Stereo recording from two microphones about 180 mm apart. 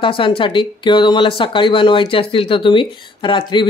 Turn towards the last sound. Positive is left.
turn(degrees=25)  # may be behind; listen again after turning